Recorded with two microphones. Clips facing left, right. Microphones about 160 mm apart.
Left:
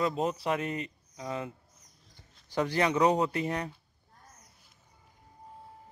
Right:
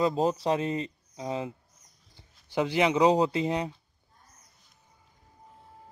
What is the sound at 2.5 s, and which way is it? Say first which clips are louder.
Speech: right 3 dB; 15° right (ahead or behind).